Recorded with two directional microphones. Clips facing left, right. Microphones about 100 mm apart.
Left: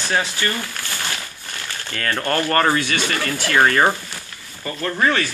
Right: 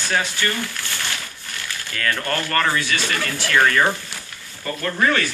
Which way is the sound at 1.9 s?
30° left (ahead or behind).